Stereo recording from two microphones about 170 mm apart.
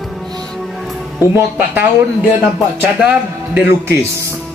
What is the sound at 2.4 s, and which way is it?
A man's voice, 10° right (ahead or behind).